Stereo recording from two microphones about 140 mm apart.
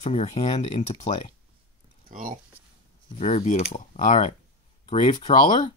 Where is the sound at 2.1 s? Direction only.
75° right (ahead or behind).